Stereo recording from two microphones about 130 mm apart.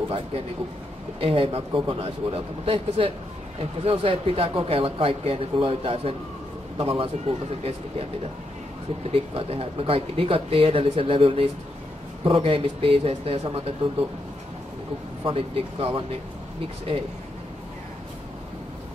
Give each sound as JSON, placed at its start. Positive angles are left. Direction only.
{"t": 1.2, "sound": "speech", "side_deg": -45}
{"t": 9.1, "sound": "speech", "side_deg": -45}
{"t": 15.2, "sound": "speech", "side_deg": -45}